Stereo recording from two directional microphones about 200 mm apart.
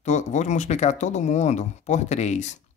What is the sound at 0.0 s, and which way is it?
Speech, 35° left (ahead or behind).